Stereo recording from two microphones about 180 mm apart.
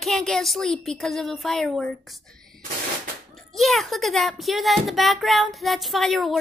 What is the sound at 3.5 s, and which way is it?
Speech, centre (ahead or behind).